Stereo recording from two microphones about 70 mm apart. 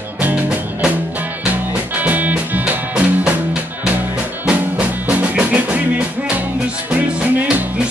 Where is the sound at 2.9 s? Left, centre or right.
Centre.